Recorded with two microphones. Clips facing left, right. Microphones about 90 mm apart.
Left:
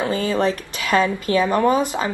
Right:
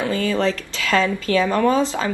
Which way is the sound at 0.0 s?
20° left (ahead or behind).